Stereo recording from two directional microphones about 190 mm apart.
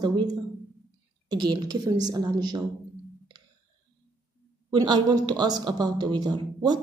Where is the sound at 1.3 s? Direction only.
20° right (ahead or behind).